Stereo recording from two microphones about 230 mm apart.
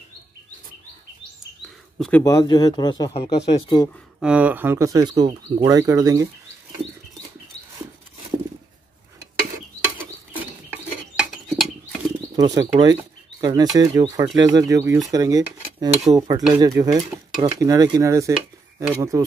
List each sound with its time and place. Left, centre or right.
1.6 s speech: centre
4.2 s speech: centre
11.1 s a sound: centre
12.4 s speech: centre
15.0 s dishes: centre
16.1 s speech: centre